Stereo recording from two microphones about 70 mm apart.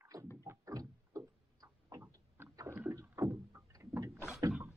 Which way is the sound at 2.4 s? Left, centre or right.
Right.